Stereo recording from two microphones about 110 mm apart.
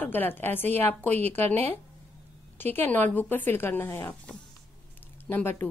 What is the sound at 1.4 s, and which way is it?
Speech, 80° right.